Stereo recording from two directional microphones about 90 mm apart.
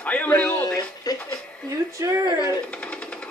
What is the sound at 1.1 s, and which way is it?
Speech, 45° left (ahead or behind).